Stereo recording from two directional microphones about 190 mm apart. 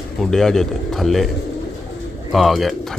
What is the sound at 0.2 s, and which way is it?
Speech, centre (ahead or behind).